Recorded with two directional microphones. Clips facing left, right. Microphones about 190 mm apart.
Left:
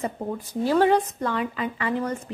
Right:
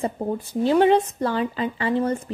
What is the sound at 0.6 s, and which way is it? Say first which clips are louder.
Speech: right 2 dB; 20° right (ahead or behind).